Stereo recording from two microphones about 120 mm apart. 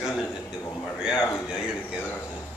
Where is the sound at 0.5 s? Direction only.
20° left (ahead or behind).